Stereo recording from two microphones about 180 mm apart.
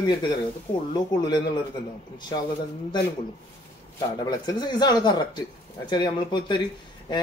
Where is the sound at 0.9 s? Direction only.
25° left (ahead or behind).